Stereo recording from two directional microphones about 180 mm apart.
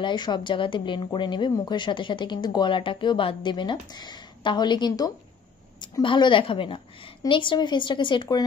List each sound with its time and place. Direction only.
0.0 s a woman's voice: 25° left (ahead or behind)